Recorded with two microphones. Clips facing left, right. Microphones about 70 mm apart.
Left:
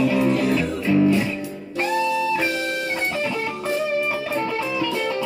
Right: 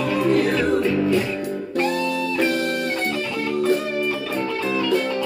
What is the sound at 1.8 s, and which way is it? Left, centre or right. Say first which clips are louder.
Music: left 2 dB; right.